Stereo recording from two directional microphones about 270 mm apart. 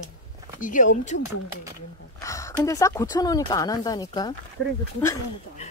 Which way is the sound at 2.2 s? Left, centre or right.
Centre.